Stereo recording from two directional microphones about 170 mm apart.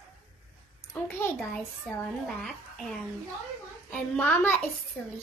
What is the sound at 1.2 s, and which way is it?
A child's voice, 15° left (ahead or behind).